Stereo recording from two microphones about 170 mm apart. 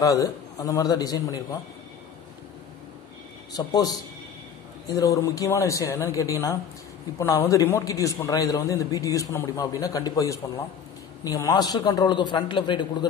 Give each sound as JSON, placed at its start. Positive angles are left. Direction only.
{"t": 0.0, "sound": "a man's voice", "side_deg": 20}
{"t": 3.5, "sound": "a man's voice", "side_deg": 20}